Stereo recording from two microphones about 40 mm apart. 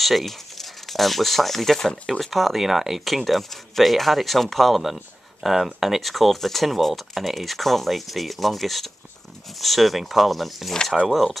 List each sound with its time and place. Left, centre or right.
0.0 s speech: centre
10.7 s speech: centre
11.1 s speech: centre